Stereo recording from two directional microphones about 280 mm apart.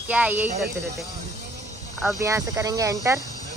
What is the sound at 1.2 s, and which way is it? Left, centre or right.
Vehicle, right.